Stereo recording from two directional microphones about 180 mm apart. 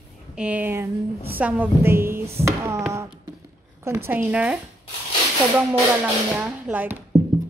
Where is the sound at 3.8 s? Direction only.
15° right (ahead or behind).